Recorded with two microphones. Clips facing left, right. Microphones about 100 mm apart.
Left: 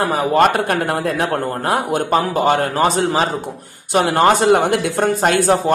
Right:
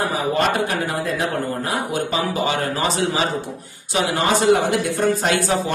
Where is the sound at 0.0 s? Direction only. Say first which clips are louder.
Left 6 dB; 60° left (ahead or behind).